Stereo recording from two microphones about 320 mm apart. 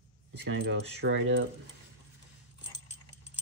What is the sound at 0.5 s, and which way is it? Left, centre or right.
Speech, right.